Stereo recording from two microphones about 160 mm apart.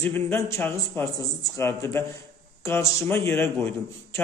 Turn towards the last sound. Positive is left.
turn(degrees=15)  # may be behind; listen again after turning